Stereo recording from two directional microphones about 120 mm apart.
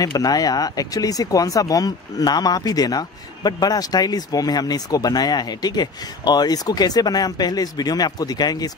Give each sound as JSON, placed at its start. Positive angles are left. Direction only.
{"t": 0.0, "sound": "speech", "side_deg": 30}